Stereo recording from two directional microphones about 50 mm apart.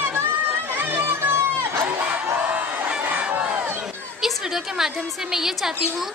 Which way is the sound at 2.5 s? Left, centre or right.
Right.